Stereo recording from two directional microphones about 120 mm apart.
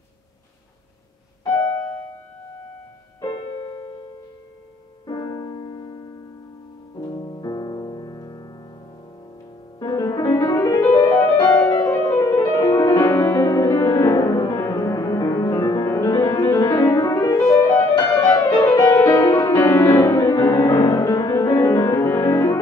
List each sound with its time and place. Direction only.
1.5 s music: 20° left (ahead or behind)
3.2 s music: 40° left (ahead or behind)
5.0 s music: 35° left (ahead or behind)
9.8 s music: 35° left (ahead or behind)
10.8 s music: 20° left (ahead or behind)
18.2 s music: 35° left (ahead or behind)
18.8 s music: 25° left (ahead or behind)